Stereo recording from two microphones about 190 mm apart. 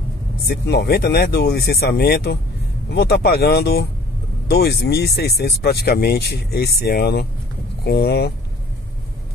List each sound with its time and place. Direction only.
0.5 s speech: 60° left (ahead or behind)